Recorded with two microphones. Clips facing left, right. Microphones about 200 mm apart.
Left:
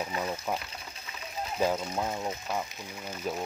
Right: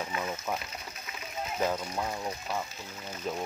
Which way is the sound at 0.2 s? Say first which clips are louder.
Left 2 dB; 15° left (ahead or behind).